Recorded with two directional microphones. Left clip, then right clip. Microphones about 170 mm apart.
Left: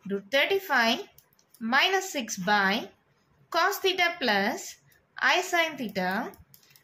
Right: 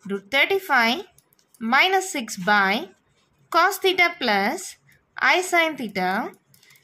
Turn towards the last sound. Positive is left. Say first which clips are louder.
# right 5 dB
turn(degrees=-45)  # may be behind; listen again after turning